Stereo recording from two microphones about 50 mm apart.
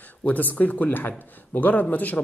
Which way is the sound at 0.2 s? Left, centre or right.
Left.